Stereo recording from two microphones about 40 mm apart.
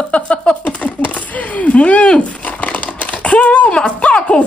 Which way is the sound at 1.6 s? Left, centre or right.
Left.